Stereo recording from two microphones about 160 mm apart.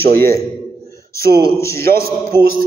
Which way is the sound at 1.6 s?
15° left (ahead or behind).